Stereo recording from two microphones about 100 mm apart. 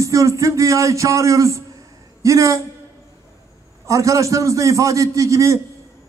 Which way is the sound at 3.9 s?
35° right (ahead or behind).